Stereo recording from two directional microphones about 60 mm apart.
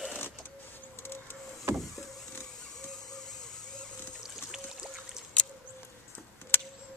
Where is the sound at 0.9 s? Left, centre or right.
Left.